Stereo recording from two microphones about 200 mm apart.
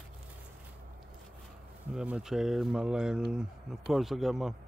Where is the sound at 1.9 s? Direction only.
5° right (ahead or behind).